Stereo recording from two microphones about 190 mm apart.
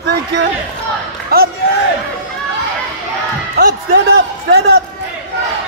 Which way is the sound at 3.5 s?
60° right (ahead or behind).